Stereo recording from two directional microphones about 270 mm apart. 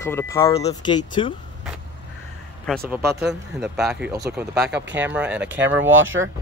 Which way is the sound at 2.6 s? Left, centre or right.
Centre.